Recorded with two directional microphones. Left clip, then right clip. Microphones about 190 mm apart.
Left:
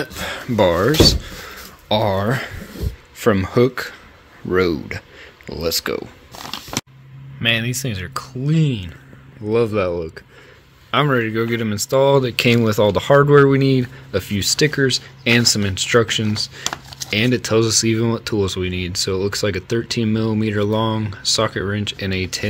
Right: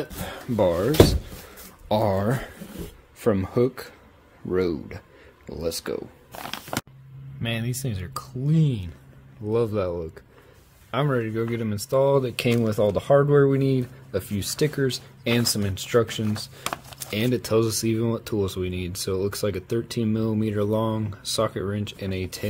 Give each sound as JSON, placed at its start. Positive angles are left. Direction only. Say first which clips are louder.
{"t": 0.0, "sound": "speech", "louder": "left 8 dB", "side_deg": 0}
{"t": 1.9, "sound": "speech", "louder": "left 5 dB", "side_deg": -20}
{"t": 3.2, "sound": "speech", "louder": "left 6 dB", "side_deg": 0}